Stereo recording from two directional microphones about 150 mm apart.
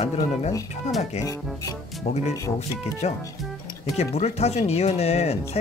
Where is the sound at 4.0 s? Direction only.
45° left (ahead or behind).